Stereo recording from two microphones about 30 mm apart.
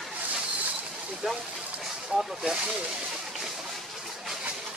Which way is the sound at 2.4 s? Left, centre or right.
Right.